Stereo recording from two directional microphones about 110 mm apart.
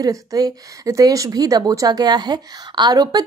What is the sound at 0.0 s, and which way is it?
A woman's voice, 35° right (ahead or behind).